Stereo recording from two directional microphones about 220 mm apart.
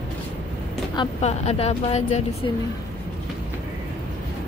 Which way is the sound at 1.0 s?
30° left (ahead or behind).